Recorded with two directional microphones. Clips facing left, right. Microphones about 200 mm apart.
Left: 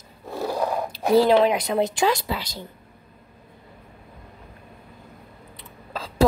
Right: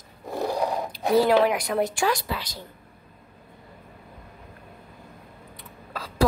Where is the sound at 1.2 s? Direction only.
25° left (ahead or behind).